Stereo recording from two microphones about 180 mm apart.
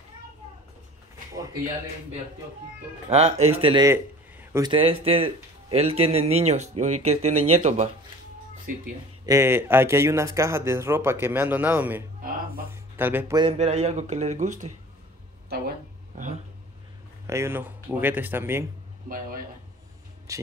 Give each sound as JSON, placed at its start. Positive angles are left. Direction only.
{"t": 1.3, "sound": "a man's voice", "side_deg": -20}
{"t": 3.1, "sound": "speech", "side_deg": -40}
{"t": 3.8, "sound": "a sound", "side_deg": -15}
{"t": 4.6, "sound": "speech", "side_deg": -30}
{"t": 9.2, "sound": "speech", "side_deg": -15}
{"t": 13.4, "sound": "speech", "side_deg": -35}
{"t": 17.3, "sound": "speech", "side_deg": -15}
{"t": 20.3, "sound": "speech", "side_deg": -15}